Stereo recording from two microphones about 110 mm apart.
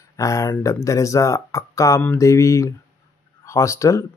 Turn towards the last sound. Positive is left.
turn(degrees=25)  # may be behind; listen again after turning